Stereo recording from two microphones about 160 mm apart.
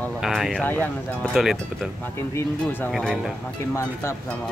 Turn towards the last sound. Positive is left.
turn(degrees=15)  # may be behind; listen again after turning